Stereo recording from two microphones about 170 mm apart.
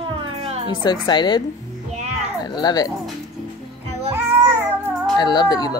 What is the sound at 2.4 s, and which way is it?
Speech, 25° left (ahead or behind).